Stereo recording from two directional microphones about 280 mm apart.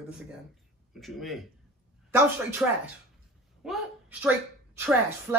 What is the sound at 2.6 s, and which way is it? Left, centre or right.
A woman's voice, centre.